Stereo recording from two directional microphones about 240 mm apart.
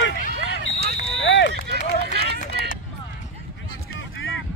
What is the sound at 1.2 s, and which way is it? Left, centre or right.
Run, left.